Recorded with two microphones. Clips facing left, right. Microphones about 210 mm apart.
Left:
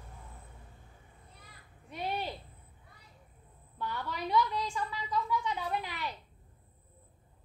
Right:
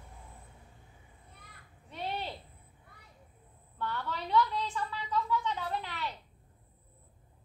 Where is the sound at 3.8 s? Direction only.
15° left (ahead or behind).